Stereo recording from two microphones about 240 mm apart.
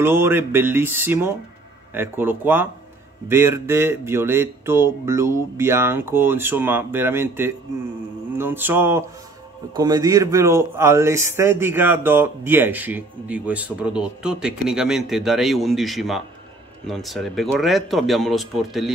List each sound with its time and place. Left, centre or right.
0.0 s speech: centre